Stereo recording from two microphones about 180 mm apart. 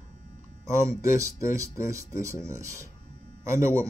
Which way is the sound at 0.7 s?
15° right (ahead or behind).